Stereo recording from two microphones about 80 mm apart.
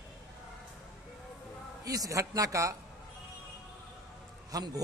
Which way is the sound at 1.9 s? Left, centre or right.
Right.